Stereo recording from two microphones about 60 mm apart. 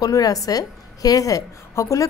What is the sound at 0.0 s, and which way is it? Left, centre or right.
A woman's voice, left.